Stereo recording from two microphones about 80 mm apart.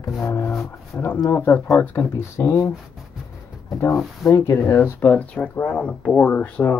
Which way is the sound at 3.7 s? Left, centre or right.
Left.